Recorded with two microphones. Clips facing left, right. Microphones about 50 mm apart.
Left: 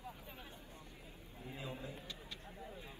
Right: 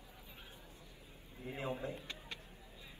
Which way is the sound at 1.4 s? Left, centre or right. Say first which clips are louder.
Right 6 dB; right.